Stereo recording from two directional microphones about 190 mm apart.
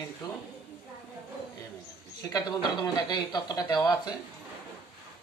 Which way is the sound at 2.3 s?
25° left (ahead or behind).